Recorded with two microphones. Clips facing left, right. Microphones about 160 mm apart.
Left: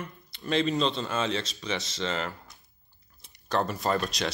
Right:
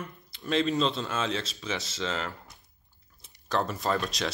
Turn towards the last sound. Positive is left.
turn(degrees=0)  # may be behind; listen again after turning